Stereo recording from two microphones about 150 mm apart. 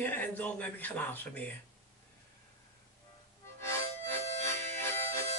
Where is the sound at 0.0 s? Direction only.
10° left (ahead or behind).